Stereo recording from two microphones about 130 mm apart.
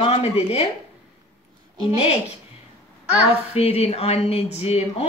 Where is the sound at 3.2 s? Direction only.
50° left (ahead or behind).